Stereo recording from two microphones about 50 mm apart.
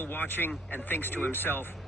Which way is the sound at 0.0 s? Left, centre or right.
Left.